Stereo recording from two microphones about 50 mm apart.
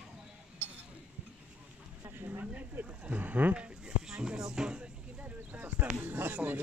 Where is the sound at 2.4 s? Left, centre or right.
Right.